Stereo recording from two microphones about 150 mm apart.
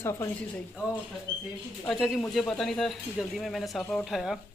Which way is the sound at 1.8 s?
Centre (ahead or behind).